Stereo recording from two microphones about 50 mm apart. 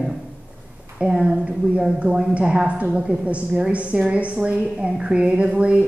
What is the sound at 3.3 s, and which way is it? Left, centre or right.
Speech, right.